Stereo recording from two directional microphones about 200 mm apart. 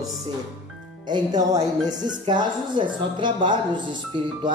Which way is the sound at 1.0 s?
20° right (ahead or behind).